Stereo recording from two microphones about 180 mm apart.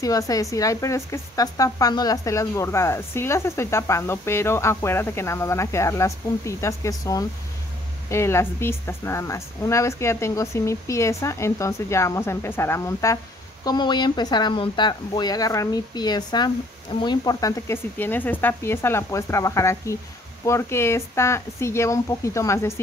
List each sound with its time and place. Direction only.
0.0 s speech: 20° left (ahead or behind)